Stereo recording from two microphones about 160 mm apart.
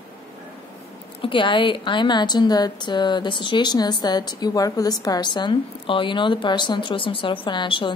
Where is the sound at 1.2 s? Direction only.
30° left (ahead or behind).